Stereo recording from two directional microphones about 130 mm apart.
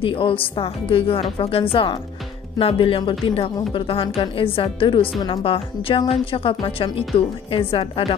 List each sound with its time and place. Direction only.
0.0 s a woman's voice: 45° left (ahead or behind)